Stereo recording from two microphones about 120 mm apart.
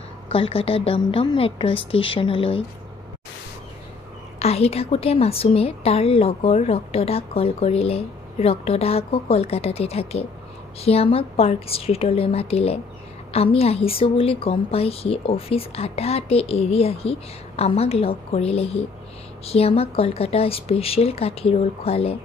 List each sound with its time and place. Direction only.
0.3 s a woman's voice: 50° left (ahead or behind)
4.4 s a woman's voice: 60° left (ahead or behind)